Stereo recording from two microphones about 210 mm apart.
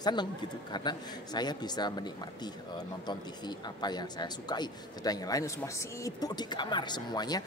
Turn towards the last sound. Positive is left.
turn(degrees=20)  # may be behind; listen again after turning